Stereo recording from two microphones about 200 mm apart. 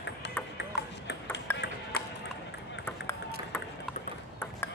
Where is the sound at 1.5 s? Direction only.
60° left (ahead or behind).